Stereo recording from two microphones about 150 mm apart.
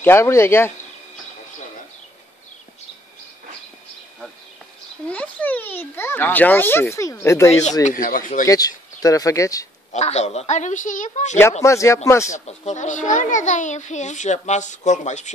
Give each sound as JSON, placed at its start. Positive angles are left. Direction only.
{"t": 0.0, "sound": "a child's voice", "side_deg": 15}
{"t": 5.0, "sound": "a child's voice", "side_deg": 10}
{"t": 7.8, "sound": "speech", "side_deg": 65}
{"t": 8.5, "sound": "speech", "side_deg": 25}
{"t": 9.9, "sound": "a child's voice", "side_deg": 45}
{"t": 11.6, "sound": "speech", "side_deg": 20}
{"t": 12.4, "sound": "a child's voice", "side_deg": 50}